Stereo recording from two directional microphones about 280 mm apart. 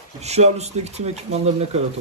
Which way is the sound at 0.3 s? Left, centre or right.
Right.